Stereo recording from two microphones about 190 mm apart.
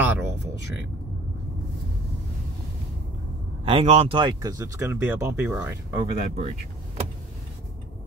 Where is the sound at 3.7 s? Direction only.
30° right (ahead or behind); by 5.8 s 10° right (ahead or behind).